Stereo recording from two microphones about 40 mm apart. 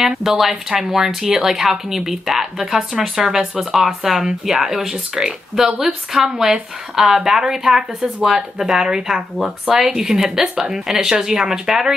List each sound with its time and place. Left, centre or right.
0.2 s speech: centre